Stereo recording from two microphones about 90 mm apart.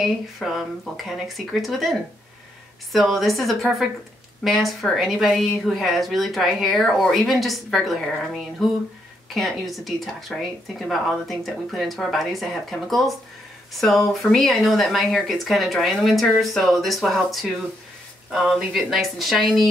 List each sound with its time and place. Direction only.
0.0 s a woman's voice: centre (ahead or behind)
9.3 s a woman's voice: centre (ahead or behind)